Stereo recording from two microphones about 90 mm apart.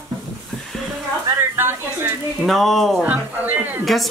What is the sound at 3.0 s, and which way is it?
Speech, 20° right (ahead or behind).